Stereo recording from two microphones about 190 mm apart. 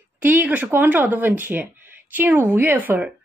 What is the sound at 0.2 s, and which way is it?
Speech, 10° right (ahead or behind).